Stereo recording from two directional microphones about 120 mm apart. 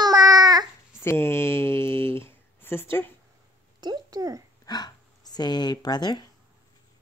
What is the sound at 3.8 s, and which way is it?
Speech, 35° right (ahead or behind).